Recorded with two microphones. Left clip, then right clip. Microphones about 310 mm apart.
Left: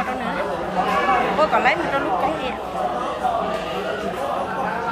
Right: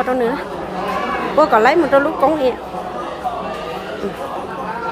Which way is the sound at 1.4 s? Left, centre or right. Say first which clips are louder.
Right 6 dB; centre.